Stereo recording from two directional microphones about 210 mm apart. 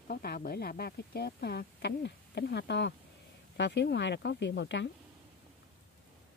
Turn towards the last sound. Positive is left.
turn(degrees=55)  # may be behind; listen again after turning